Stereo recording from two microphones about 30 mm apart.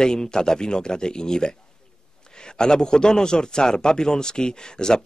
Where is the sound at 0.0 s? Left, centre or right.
Left.